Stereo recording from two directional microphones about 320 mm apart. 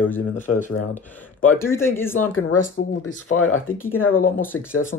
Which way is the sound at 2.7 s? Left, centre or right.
Left.